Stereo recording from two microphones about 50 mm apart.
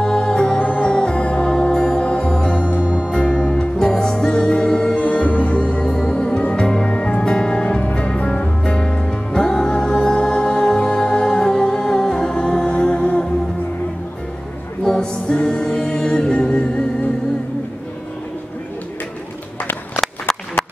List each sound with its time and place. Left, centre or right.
0.0 s music: centre
14.8 s a capella: centre
20.0 s a sound: centre